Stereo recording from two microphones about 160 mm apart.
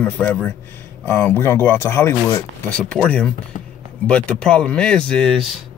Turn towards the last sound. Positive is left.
turn(degrees=0)  # may be behind; listen again after turning